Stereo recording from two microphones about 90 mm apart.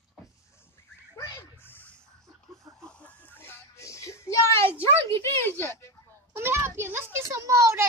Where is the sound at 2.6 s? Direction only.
10° left (ahead or behind); by 5.7 s 25° left (ahead or behind).